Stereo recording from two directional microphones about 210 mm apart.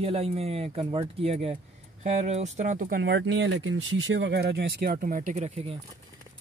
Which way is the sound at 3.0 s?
55° right (ahead or behind).